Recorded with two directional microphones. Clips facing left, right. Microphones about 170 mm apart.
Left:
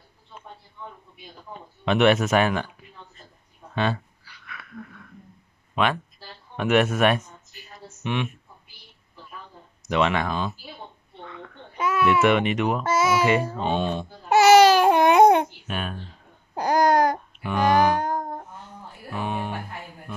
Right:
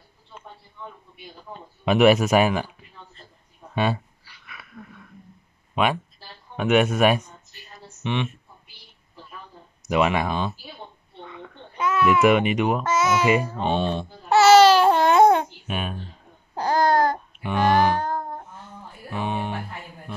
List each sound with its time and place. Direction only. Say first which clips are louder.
1.9 s speech: right 2 dB; 5° right (ahead or behind)
3.7 s speech: right 1 dB; 10° right (ahead or behind)
6.5 s speech: right 1 dB; centre (ahead or behind)
9.8 s speech: right 1 dB; 10° right (ahead or behind)
11.2 s babbling: even; 10° right (ahead or behind)
11.7 s baby cry: right 1 dB; 10° left (ahead or behind)
12.1 s speech: right 2 dB; 5° right (ahead or behind)
12.8 s a child's voice: even; 10° left (ahead or behind)
13.3 s speech: right 1 dB; 10° right (ahead or behind)
13.7 s babbling: right 1 dB; 10° left (ahead or behind)
15.6 s a child's voice: right 1 dB; 5° right (ahead or behind)
16.5 s babbling: left 1 dB; 15° left (ahead or behind)
17.4 s speech: right 1 dB; 5° left (ahead or behind)
19.1 s speech: right 1 dB; 5° left (ahead or behind)